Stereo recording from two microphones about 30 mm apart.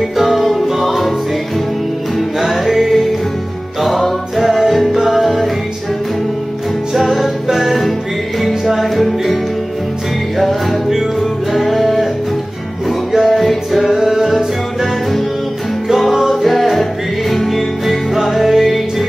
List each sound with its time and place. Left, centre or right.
0.2 s music: centre
2.1 s music: centre
4.4 s music: centre
6.9 s music: centre
13.2 s music: centre
13.9 s music: centre
14.3 s music: centre